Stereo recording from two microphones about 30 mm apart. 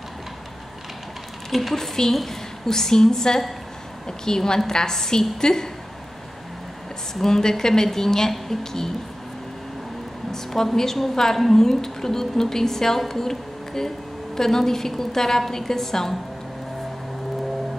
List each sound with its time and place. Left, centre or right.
1.5 s a woman's voice: centre
1.8 s a woman's voice: centre
7.2 s a woman's voice: centre
10.3 s a woman's voice: centre